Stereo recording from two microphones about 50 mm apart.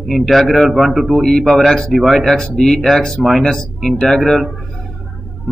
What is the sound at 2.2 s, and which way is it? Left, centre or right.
Speech, centre.